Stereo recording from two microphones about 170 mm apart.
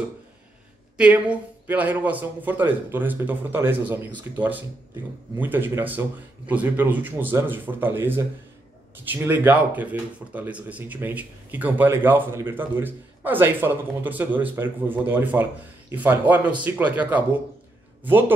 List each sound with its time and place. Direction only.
0.9 s speech: 5° right (ahead or behind)